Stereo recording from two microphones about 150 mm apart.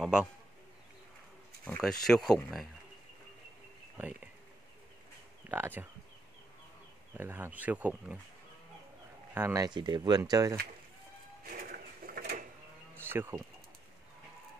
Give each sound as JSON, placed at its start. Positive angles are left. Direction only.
{"t": 0.0, "sound": "a man's voice", "side_deg": -5}
{"t": 1.6, "sound": "speech", "side_deg": 5}
{"t": 5.5, "sound": "speech", "side_deg": -15}
{"t": 7.2, "sound": "speech", "side_deg": -15}
{"t": 9.3, "sound": "speech", "side_deg": -20}
{"t": 11.5, "sound": "a sound", "side_deg": -75}
{"t": 13.0, "sound": "speech", "side_deg": -15}